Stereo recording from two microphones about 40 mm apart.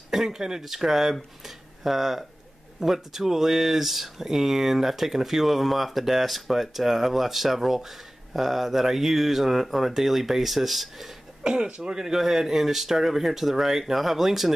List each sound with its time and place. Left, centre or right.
0.1 s speech: centre
11.4 s speech: right
12.0 s speech: centre